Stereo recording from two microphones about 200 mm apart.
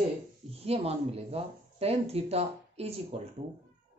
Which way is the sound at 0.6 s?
30° right (ahead or behind).